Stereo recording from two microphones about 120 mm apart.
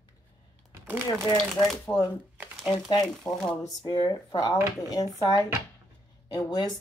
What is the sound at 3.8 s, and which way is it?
Speech, 35° left (ahead or behind).